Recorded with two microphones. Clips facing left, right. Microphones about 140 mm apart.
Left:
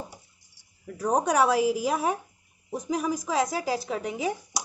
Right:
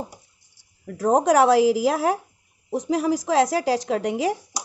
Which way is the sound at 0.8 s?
90° right.